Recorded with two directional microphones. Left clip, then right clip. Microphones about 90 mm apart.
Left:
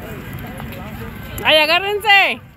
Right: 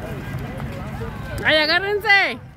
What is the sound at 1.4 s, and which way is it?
Speech, 15° right (ahead or behind).